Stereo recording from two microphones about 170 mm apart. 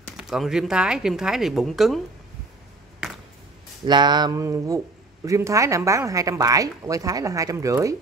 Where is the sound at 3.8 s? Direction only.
25° right (ahead or behind).